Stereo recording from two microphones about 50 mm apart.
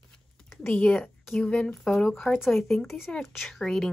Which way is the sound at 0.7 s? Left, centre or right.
Left.